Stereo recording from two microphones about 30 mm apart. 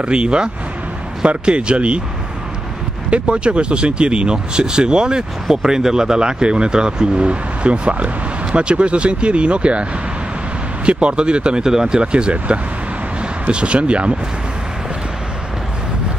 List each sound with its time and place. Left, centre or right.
0.0 s speech: right
3.1 s speech: right
7.2 s speech: right
10.9 s speech: right
11.6 s speech: centre
12.0 s speech: right